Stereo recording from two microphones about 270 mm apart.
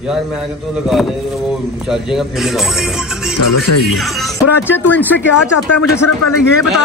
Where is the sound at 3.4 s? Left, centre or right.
Left.